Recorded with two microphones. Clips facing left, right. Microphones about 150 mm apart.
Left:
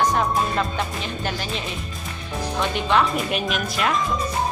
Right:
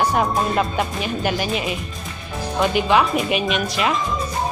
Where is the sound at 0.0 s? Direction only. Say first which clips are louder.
Right 2 dB; 10° right (ahead or behind).